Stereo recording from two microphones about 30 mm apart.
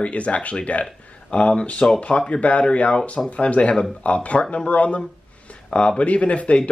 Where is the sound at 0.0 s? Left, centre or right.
Left.